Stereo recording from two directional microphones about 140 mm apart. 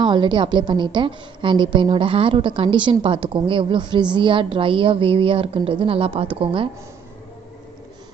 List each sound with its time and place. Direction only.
0.0 s a woman's voice: 35° right (ahead or behind)